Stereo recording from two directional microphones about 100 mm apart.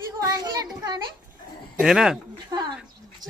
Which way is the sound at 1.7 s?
5° right (ahead or behind).